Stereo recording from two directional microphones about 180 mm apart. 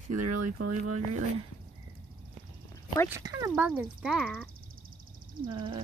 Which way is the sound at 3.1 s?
15° right (ahead or behind).